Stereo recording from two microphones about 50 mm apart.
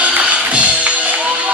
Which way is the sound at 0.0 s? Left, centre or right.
Right.